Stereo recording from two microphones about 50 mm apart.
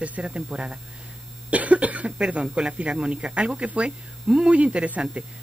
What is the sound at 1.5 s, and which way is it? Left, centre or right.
Speech, right.